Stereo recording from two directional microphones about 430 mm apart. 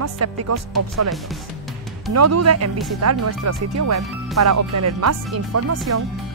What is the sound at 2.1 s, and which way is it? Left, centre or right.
Speech, right.